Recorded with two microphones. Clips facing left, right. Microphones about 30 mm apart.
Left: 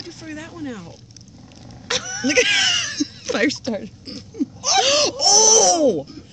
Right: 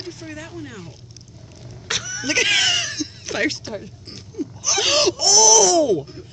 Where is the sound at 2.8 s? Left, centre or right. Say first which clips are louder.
Left 4 dB; left.